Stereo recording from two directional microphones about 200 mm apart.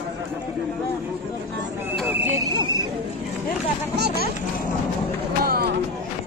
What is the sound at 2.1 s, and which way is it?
Speech, 10° right (ahead or behind).